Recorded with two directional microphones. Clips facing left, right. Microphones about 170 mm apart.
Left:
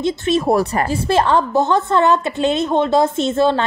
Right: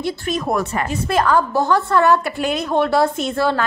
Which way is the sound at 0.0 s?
30° left (ahead or behind).